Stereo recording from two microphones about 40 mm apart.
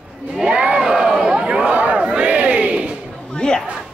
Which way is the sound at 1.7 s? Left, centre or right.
Right.